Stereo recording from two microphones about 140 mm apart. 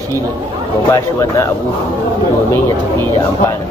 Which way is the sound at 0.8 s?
20° left (ahead or behind).